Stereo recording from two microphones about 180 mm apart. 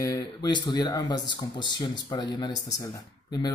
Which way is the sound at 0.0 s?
20° left (ahead or behind).